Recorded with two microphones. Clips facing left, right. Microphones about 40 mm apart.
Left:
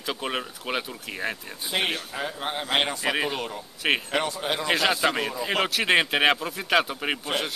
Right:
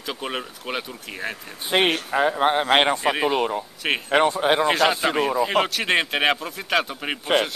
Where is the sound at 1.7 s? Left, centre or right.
Right.